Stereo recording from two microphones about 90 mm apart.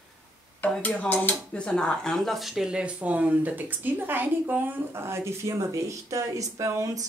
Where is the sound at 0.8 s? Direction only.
15° left (ahead or behind).